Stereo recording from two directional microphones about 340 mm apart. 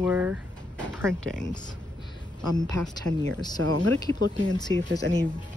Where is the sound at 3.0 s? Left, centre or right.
Centre.